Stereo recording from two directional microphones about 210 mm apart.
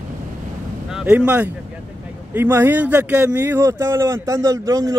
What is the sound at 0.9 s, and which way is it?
Speech, 5° right (ahead or behind).